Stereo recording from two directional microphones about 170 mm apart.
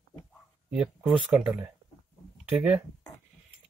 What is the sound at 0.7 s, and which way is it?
Speech, 5° right (ahead or behind).